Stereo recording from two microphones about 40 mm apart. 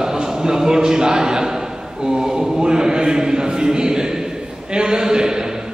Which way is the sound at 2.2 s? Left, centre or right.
Centre.